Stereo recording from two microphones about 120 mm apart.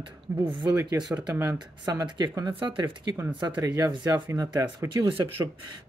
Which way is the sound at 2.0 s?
40° right (ahead or behind).